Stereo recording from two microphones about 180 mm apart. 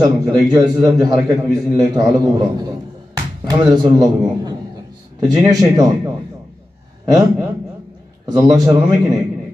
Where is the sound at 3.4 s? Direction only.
20° right (ahead or behind).